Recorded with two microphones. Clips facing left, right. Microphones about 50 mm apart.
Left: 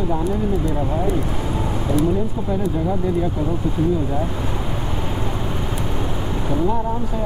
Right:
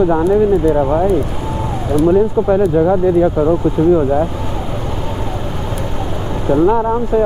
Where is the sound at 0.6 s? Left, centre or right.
Right.